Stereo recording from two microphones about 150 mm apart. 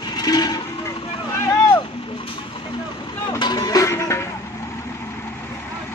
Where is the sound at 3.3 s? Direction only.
30° left (ahead or behind).